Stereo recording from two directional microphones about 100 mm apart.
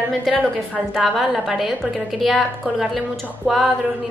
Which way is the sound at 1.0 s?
5° right (ahead or behind).